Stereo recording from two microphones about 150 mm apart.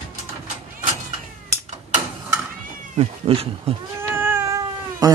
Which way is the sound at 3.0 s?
40° right (ahead or behind).